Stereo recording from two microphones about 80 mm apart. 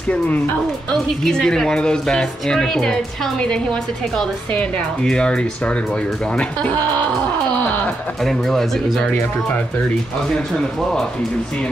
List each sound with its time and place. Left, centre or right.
1.2 s speech: centre
8.2 s speech: centre
9.1 s speech: centre